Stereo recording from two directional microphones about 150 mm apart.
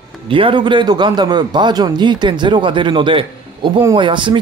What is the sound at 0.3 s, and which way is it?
A man's voice, 35° right (ahead or behind).